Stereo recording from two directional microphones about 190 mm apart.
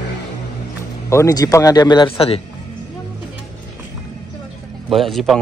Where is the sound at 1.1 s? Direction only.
15° left (ahead or behind).